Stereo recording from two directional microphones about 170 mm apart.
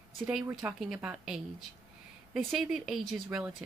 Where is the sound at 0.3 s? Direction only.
5° right (ahead or behind).